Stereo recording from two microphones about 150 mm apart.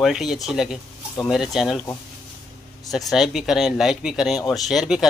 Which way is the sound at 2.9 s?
Centre (ahead or behind).